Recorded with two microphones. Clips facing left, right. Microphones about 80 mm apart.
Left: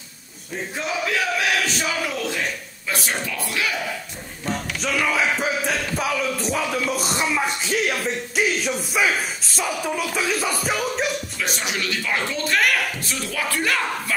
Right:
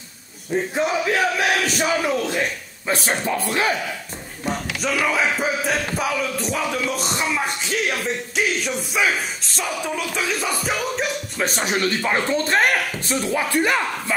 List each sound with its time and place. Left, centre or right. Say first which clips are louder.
0.7 s speech: right 3 dB; right
4.8 s music: right 1 dB; centre
11.3 s speech: right 4 dB; right